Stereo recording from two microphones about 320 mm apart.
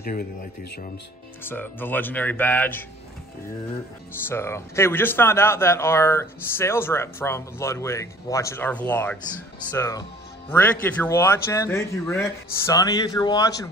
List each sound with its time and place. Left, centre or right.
0.0 s speech: left
1.4 s speech: centre
4.3 s speech: centre